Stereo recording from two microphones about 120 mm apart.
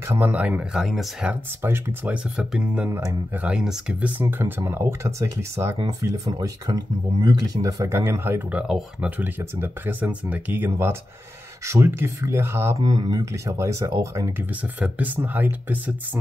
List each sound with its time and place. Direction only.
0.1 s speech: 15° right (ahead or behind)
1.6 s speech: 20° right (ahead or behind)
2.3 s speech: 10° right (ahead or behind)
2.9 s speech: 30° right (ahead or behind)
3.3 s speech: 10° right (ahead or behind)
9.2 s speech: 20° right (ahead or behind)
12.8 s speech: 30° right (ahead or behind)
14.5 s speech: 10° right (ahead or behind)